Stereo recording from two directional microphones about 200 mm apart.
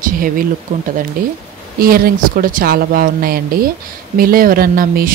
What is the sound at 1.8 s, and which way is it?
Speech, 45° right (ahead or behind).